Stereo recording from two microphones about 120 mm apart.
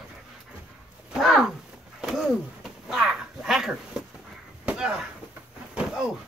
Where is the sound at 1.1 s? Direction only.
Centre (ahead or behind).